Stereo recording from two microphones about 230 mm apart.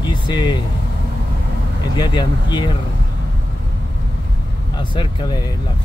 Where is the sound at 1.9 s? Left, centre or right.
Centre.